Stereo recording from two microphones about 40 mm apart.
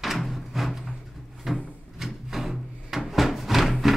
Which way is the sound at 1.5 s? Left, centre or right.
Centre.